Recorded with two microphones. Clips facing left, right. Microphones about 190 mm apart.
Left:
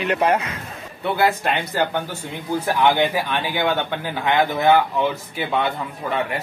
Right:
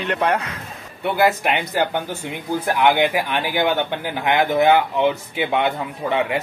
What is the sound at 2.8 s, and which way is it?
A man's voice, 15° right (ahead or behind).